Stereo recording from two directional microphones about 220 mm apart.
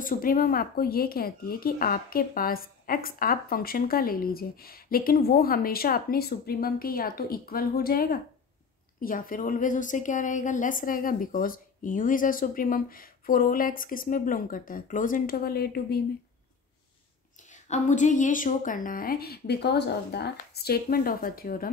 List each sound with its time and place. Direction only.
0.0 s a woman's voice: 40° left (ahead or behind)
17.5 s a woman's voice: 35° left (ahead or behind)